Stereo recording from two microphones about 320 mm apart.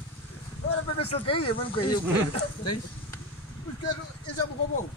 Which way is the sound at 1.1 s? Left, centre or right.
Centre.